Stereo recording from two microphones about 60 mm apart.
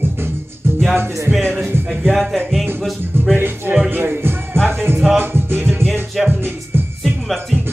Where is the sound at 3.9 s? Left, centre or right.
Right.